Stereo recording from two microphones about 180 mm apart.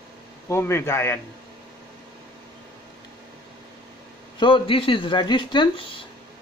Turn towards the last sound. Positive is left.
turn(degrees=25)  # may be behind; listen again after turning